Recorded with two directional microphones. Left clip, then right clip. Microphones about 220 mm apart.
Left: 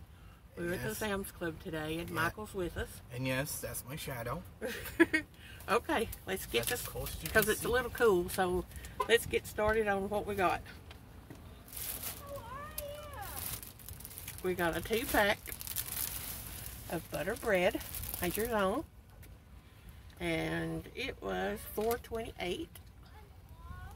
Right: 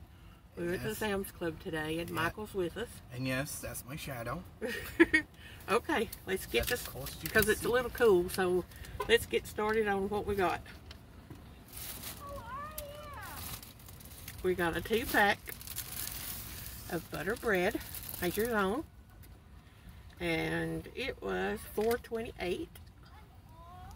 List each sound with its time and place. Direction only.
0.6 s speech: centre (ahead or behind)
3.2 s speech: 35° left (ahead or behind)
4.6 s speech: centre (ahead or behind)
14.4 s speech: centre (ahead or behind)
16.9 s speech: 5° left (ahead or behind)
20.2 s speech: centre (ahead or behind)